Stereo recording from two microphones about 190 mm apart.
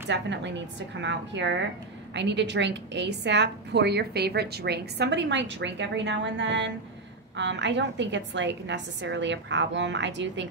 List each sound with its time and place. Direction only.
0.1 s a woman's voice: 70° right (ahead or behind)